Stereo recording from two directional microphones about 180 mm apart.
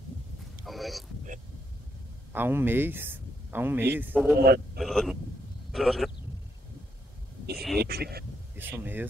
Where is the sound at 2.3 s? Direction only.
10° right (ahead or behind).